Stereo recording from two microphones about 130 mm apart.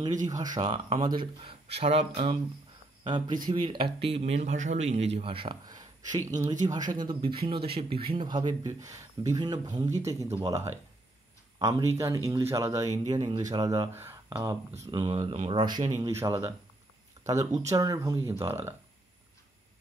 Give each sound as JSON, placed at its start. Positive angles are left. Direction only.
{"t": 0.3, "sound": "speech", "side_deg": -30}
{"t": 3.0, "sound": "speech", "side_deg": -35}
{"t": 12.0, "sound": "speech", "side_deg": -25}
{"t": 16.0, "sound": "speech", "side_deg": -25}
{"t": 17.2, "sound": "a sound", "side_deg": -25}
{"t": 17.6, "sound": "speech", "side_deg": -30}